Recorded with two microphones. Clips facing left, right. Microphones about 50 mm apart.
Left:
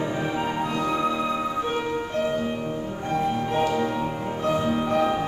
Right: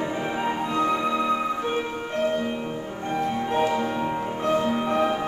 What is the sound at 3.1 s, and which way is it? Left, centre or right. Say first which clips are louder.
Music: left 1 dB; right.